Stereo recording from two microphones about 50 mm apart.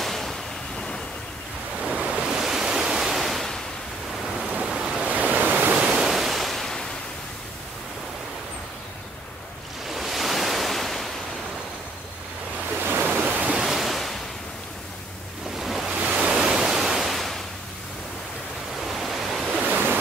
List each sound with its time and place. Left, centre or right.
0.0 s waves: centre
1.8 s waves: right
2.2 s waves: centre
4.5 s waves: centre
5.0 s waves: right
5.8 s ocean: centre
9.8 s waves: centre
12.8 s waves: right
13.6 s waves: centre
15.6 s waves: centre
16.0 s waves: centre
18.9 s waves: centre
19.6 s waves: right